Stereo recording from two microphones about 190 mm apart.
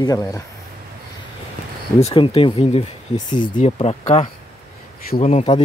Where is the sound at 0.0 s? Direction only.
20° left (ahead or behind).